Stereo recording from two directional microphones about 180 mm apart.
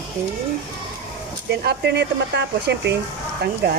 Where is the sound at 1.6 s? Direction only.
65° right (ahead or behind).